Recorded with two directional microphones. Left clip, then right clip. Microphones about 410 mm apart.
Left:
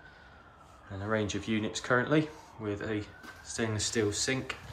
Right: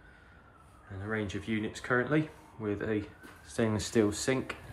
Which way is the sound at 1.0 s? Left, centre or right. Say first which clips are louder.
Left 4 dB; centre.